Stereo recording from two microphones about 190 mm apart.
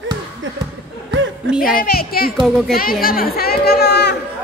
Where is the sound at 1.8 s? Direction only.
50° left (ahead or behind).